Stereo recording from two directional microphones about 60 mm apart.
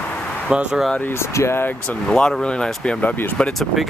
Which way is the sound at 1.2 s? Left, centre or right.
Left.